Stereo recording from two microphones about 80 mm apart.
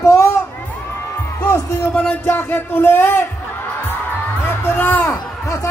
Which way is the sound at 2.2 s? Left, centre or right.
Left.